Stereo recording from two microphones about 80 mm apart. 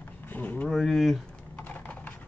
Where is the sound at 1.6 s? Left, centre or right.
Left.